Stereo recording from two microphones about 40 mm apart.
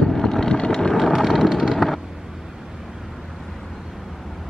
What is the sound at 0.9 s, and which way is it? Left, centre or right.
Vehicle, centre.